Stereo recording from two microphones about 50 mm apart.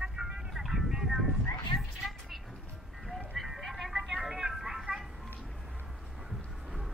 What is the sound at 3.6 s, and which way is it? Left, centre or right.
Music, centre.